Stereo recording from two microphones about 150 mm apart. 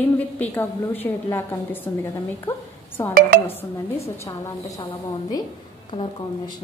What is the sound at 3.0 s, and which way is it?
Speech, 20° left (ahead or behind).